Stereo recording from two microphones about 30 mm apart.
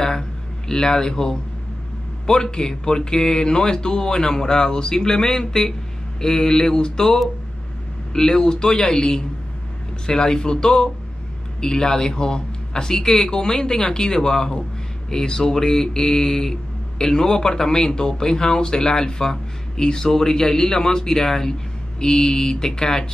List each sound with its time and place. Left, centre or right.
0.0 s a sound: centre
2.2 s speech: left
8.1 s speech: centre
12.9 s speech: centre